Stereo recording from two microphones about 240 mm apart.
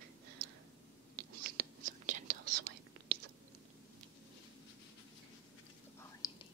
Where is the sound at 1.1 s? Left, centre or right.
Right.